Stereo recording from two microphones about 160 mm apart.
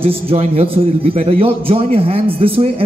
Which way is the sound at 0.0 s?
35° right (ahead or behind).